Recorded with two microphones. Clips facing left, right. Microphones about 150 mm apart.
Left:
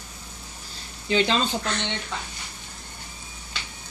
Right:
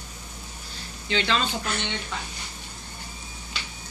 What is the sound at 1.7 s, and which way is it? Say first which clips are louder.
Speech: left 1 dB; 5° right (ahead or behind).